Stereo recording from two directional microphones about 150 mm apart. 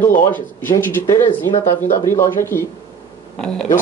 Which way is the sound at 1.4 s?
20° left (ahead or behind).